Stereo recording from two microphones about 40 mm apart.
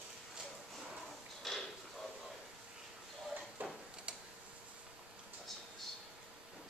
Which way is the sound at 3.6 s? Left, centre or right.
Right.